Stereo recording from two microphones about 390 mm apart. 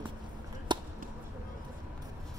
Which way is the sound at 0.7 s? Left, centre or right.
Centre.